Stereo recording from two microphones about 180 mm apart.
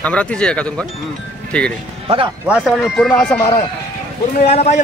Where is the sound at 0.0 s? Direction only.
5° left (ahead or behind).